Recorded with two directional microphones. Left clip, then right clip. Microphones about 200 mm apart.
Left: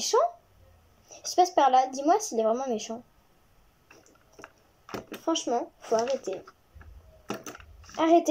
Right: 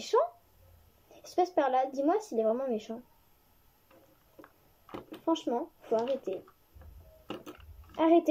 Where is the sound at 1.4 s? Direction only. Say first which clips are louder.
Left 6 dB; 10° right (ahead or behind).